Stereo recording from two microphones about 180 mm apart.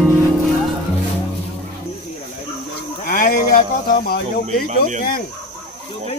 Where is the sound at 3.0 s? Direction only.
50° left (ahead or behind).